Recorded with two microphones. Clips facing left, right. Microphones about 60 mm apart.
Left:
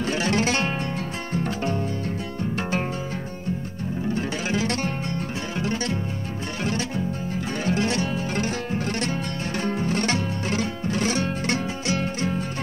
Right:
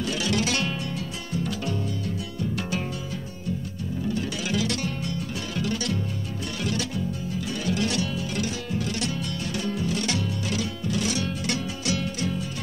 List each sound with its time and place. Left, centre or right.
0.0 s music: left
4.1 s music: left